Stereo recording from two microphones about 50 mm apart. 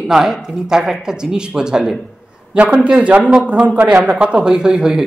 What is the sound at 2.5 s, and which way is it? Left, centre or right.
Speech, right.